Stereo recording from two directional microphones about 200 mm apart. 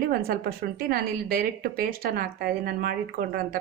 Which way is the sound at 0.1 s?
50° right (ahead or behind).